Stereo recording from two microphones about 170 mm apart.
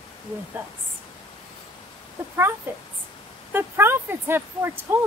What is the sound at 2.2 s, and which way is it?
A woman's voice, 15° right (ahead or behind).